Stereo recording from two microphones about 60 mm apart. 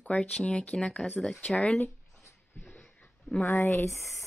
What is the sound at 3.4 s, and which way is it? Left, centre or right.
Speech, left.